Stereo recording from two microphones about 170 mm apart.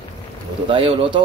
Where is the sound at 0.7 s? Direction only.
30° right (ahead or behind).